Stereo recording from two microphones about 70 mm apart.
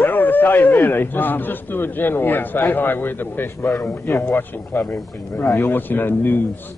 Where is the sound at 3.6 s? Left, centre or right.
Left.